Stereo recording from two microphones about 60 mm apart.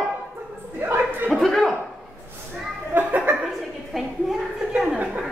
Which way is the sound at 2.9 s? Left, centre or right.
Right.